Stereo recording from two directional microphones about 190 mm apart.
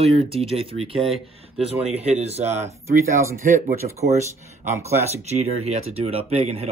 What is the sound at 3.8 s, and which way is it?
Speech, 35° right (ahead or behind).